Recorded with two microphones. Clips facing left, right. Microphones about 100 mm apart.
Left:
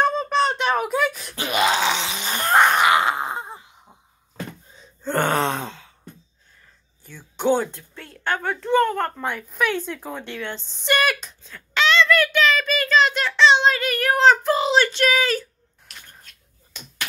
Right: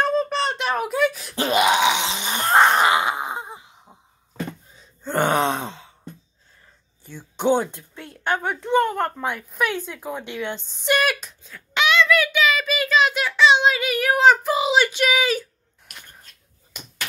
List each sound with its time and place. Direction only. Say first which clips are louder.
0.0 s beatboxing: left 1 dB; centre (ahead or behind)
1.3 s wail: right 5 dB; 30° right (ahead or behind)
1.6 s a sound: right 1 dB; 15° right (ahead or behind)
4.7 s gasp: even; 10° right (ahead or behind)
7.0 s a woman's voice: right 1 dB; 25° right (ahead or behind); by 11.6 s 5° right (ahead or behind)
11.7 s child singing: even; 10° right (ahead or behind)